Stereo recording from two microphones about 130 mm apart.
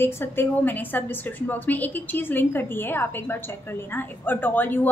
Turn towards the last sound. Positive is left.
turn(degrees=15)  # may be behind; listen again after turning